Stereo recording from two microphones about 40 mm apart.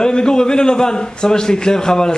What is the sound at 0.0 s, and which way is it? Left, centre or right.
A man's voice, centre.